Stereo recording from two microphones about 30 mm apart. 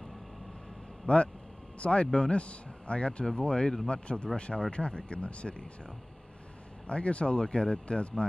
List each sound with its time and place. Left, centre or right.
1.0 s speech: left
6.9 s speech: left